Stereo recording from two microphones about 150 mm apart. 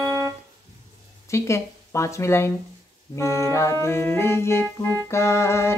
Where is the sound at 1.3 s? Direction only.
20° left (ahead or behind).